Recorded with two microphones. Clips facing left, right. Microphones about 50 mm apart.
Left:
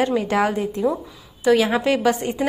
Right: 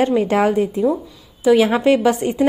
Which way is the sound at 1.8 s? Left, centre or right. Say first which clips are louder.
Right 4 dB; right.